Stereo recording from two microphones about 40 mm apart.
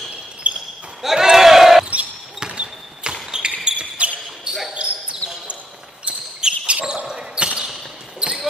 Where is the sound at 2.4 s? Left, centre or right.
Right.